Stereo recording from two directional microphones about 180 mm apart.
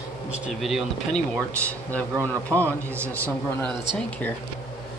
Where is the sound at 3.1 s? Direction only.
10° left (ahead or behind).